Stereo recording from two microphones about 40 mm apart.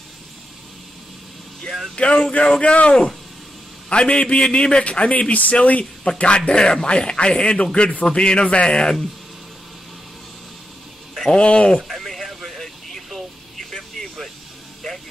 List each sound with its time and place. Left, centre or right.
2.0 s a man's voice: left
11.3 s a man's voice: left
12.0 s a sound: centre
12.4 s vehicle: centre